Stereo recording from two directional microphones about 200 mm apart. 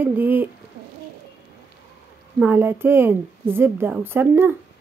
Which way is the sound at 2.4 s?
10° right (ahead or behind).